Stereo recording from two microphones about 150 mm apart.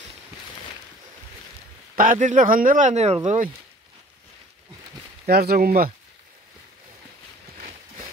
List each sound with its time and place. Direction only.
2.0 s speech: 60° right (ahead or behind)
5.2 s speech: 90° right